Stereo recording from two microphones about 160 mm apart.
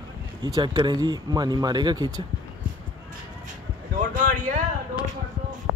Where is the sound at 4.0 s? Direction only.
55° right (ahead or behind).